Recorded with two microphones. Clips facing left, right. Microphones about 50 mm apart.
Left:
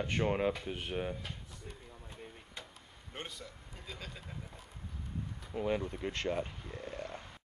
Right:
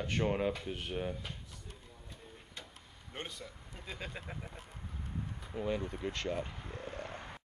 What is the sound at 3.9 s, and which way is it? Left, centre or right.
Speech, right.